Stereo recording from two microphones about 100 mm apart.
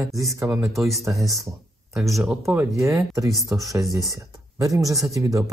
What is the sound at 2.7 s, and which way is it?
Speech, 30° right (ahead or behind).